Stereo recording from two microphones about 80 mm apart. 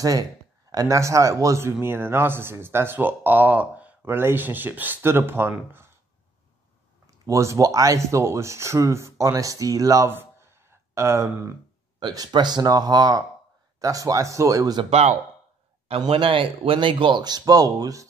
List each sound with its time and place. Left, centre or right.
0.0 s speech: right
1.7 s speech: right
7.1 s speech: right
10.0 s a sound: right
12.1 s speech: right
16.0 s speech: right